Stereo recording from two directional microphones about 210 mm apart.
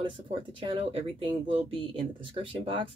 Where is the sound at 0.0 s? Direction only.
25° right (ahead or behind).